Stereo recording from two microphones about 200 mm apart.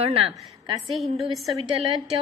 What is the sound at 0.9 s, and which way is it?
Speech, centre (ahead or behind).